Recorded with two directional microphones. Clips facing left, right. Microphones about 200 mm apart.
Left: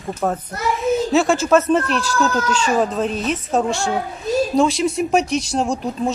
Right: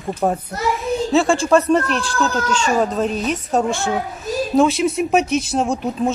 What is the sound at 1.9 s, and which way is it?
Speech, 40° left (ahead or behind).